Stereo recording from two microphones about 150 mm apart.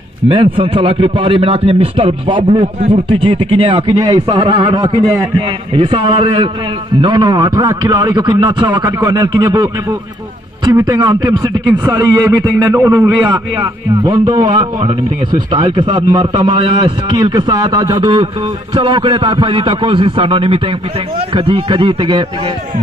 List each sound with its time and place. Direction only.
0.3 s a man's voice: 35° right (ahead or behind)
10.9 s a man's voice: 30° right (ahead or behind)